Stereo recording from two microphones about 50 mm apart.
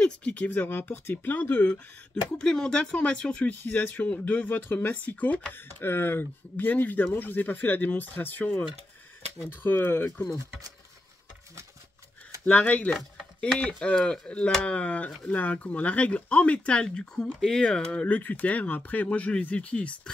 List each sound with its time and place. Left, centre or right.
0.0 s speech: left
0.5 s speech: left
2.3 s speech: centre
3.5 s speech: left
4.9 s speech: left
5.5 s speech: left
9.5 s speech: left
12.4 s speech: left
18.0 s speech: left